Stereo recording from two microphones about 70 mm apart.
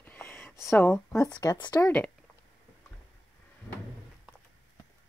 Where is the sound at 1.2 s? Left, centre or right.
Left.